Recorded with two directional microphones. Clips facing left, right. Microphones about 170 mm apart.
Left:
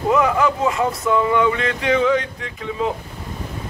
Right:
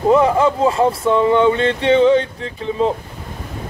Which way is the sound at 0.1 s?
30° right (ahead or behind).